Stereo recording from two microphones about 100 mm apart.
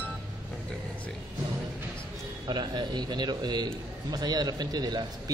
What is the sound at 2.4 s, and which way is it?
A man's voice, 45° right (ahead or behind).